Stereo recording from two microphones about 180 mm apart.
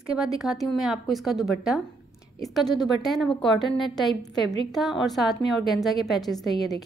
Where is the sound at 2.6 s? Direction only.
20° left (ahead or behind).